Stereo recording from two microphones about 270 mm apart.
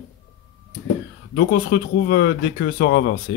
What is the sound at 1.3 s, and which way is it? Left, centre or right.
Speech, left.